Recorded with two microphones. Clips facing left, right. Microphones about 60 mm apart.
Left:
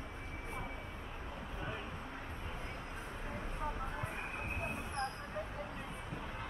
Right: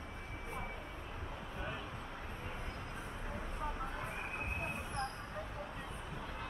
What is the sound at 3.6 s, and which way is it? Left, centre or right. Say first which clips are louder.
Vehicle: left 1 dB; centre.